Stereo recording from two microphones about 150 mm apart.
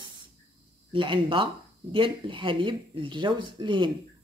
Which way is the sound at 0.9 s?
35° right (ahead or behind).